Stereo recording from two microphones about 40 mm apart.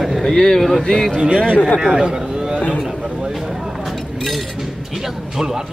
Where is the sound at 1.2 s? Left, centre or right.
Right.